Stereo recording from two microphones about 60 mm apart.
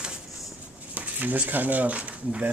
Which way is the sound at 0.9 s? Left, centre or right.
Right.